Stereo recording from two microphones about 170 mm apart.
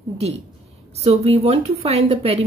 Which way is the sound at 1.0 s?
35° right (ahead or behind).